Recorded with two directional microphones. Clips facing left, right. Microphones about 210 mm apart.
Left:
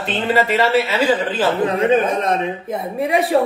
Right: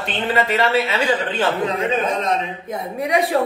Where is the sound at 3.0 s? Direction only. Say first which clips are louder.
Left 1 dB; 25° left (ahead or behind).